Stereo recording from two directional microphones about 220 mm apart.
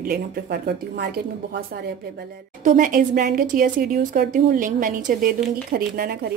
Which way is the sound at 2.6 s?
40° right (ahead or behind).